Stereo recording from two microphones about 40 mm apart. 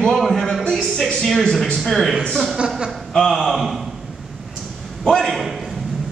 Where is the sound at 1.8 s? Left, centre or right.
Centre.